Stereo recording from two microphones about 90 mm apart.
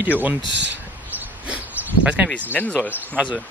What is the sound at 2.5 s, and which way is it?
Speech, 15° left (ahead or behind).